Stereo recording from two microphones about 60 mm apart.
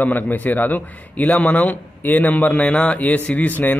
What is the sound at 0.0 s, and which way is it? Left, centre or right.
A man's voice, left.